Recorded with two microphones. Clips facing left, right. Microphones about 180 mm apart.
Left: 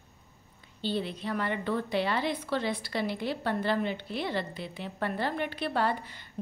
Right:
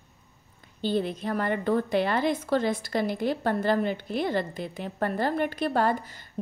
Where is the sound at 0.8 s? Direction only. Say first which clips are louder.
Right 5 dB; 50° right (ahead or behind).